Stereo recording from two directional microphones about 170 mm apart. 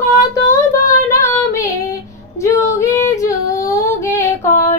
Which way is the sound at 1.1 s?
20° left (ahead or behind).